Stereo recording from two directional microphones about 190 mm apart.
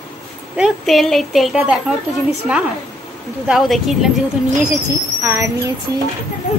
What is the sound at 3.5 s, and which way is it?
Speech, centre (ahead or behind).